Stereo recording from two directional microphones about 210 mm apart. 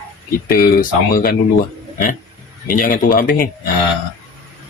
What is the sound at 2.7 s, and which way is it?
Speech, 40° left (ahead or behind).